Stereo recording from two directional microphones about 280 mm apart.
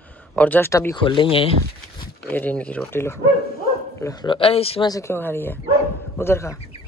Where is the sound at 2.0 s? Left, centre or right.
Centre.